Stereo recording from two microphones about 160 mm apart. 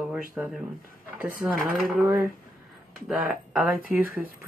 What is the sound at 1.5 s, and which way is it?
Speech, 65° right (ahead or behind).